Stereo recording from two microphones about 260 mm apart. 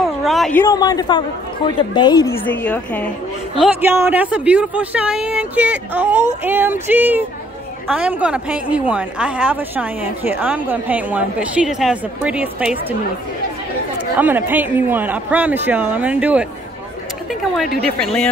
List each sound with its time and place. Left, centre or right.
0.0 s a sound: centre
0.7 s a woman's voice: centre
3.5 s a woman's voice: centre
14.1 s speech: centre
17.9 s a woman's voice: centre